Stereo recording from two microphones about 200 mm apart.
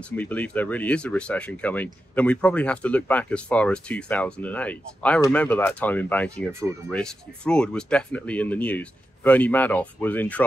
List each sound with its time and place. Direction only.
0.1 s speech: 10° left (ahead or behind)